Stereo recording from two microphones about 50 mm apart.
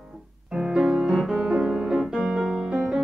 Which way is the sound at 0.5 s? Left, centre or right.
Centre.